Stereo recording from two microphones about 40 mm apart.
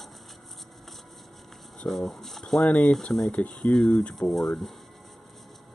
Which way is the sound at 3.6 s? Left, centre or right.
Centre.